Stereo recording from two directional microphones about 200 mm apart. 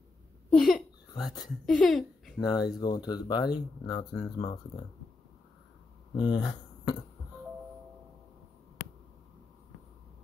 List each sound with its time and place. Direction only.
0.5 s speech: centre (ahead or behind)
1.1 s speech: 20° left (ahead or behind)
1.7 s speech: centre (ahead or behind)
2.4 s speech: 20° left (ahead or behind)
6.1 s speech: 20° left (ahead or behind)